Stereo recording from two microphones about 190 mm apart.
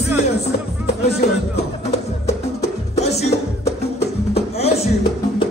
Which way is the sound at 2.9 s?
35° left (ahead or behind).